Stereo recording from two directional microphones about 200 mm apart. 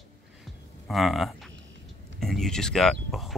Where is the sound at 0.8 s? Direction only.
Centre (ahead or behind).